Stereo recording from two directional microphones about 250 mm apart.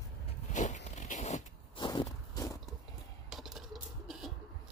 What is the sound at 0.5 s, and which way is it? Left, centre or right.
Zipper, left.